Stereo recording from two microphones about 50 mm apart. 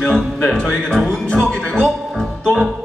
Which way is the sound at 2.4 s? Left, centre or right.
Centre.